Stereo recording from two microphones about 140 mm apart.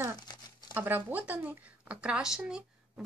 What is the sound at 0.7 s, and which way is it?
A woman's voice, 15° right (ahead or behind).